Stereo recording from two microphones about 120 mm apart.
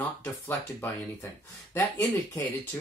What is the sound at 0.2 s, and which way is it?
Speech, 20° left (ahead or behind).